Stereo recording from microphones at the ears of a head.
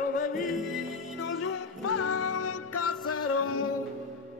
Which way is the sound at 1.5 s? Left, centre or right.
Left.